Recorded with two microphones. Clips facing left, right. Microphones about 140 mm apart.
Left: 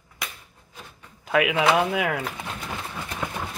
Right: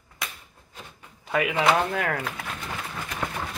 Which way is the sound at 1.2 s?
5° left (ahead or behind).